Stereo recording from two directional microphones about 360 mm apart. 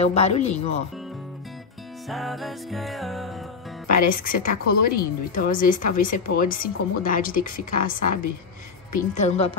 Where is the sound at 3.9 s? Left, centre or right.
Left.